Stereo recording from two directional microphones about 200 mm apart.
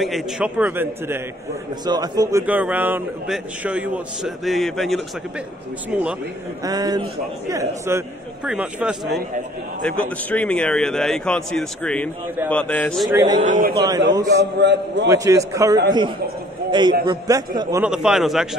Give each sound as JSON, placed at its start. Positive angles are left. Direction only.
{"t": 0.0, "sound": "a man's voice", "side_deg": -5}
{"t": 2.4, "sound": "a man's voice", "side_deg": -5}
{"t": 6.6, "sound": "a man's voice", "side_deg": -20}
{"t": 9.8, "sound": "a man's voice", "side_deg": 5}
{"t": 13.1, "sound": "a man's voice", "side_deg": -20}
{"t": 13.4, "sound": "a man's voice", "side_deg": -40}
{"t": 13.8, "sound": "a man's voice", "side_deg": -20}
{"t": 14.3, "sound": "a man's voice", "side_deg": -60}
{"t": 15.0, "sound": "a man's voice", "side_deg": -15}
{"t": 17.0, "sound": "a man's voice", "side_deg": -25}
{"t": 17.8, "sound": "a man's voice", "side_deg": -5}